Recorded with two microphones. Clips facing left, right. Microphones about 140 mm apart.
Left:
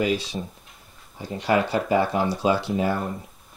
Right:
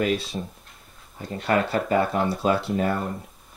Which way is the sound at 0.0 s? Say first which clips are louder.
Even; centre (ahead or behind).